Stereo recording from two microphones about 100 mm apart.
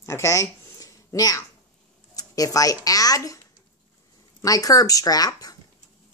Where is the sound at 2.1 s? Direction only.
35° left (ahead or behind).